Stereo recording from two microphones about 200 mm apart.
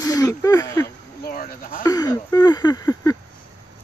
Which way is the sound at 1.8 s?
20° left (ahead or behind).